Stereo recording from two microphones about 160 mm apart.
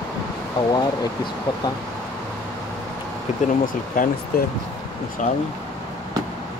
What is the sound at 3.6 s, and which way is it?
Speech, 60° left (ahead or behind).